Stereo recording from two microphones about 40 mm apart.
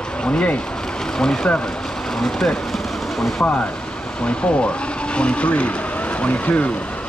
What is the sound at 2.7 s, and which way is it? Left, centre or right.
Vehicle, centre.